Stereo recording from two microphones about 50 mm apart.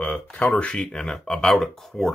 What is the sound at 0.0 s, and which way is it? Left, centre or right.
Speech, left.